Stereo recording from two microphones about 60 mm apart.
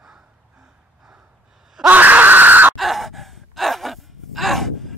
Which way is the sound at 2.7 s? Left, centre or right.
Centre.